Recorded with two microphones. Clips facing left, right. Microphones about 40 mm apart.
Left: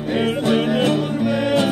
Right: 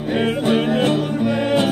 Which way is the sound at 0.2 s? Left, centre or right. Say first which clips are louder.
Even; centre.